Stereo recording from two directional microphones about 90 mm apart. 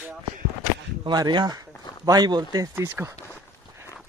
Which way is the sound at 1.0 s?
55° right (ahead or behind).